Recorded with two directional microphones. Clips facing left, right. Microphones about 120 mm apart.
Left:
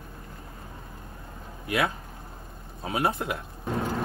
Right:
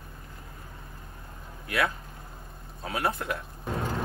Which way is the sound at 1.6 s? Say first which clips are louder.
Left 1 dB; 20° left (ahead or behind).